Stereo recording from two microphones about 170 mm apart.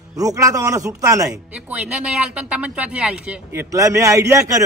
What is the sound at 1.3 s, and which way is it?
Speech, 5° right (ahead or behind).